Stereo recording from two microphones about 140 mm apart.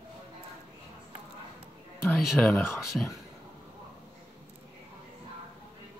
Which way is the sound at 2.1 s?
Centre (ahead or behind).